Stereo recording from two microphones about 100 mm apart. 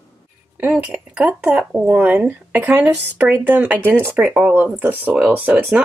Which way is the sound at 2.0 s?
15° right (ahead or behind).